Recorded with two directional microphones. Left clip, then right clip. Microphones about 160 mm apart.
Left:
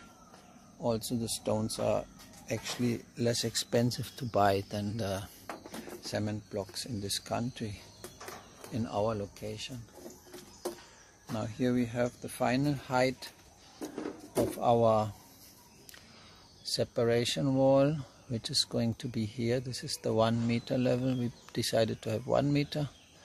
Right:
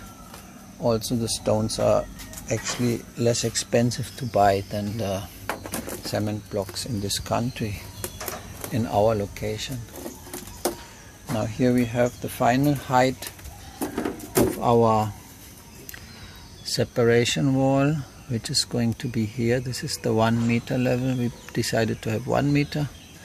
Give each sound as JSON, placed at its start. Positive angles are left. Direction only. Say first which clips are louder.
{"t": 0.8, "sound": "speech", "louder": "right 9 dB", "side_deg": 25}
{"t": 6.0, "sound": "speech", "louder": "right 7 dB", "side_deg": 30}
{"t": 8.7, "sound": "speech", "louder": "right 11 dB", "side_deg": 5}
{"t": 11.3, "sound": "speech", "louder": "right 9 dB", "side_deg": 10}
{"t": 14.6, "sound": "speech", "louder": "right 5 dB", "side_deg": 25}
{"t": 16.6, "sound": "speech", "louder": "right 8 dB", "side_deg": 20}